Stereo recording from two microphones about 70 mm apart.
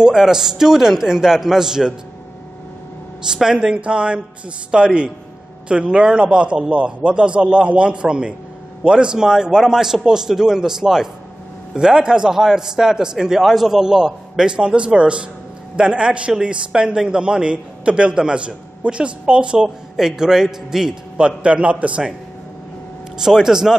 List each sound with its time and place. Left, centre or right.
0.0 s a man's voice: centre
3.3 s a man's voice: centre
23.1 s a man's voice: centre